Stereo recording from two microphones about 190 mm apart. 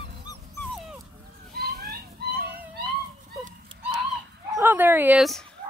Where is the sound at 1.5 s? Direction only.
50° right (ahead or behind).